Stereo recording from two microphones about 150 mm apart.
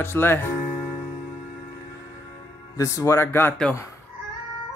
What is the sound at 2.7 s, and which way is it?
Music, 20° left (ahead or behind).